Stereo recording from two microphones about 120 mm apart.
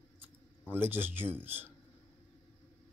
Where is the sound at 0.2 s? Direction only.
15° right (ahead or behind).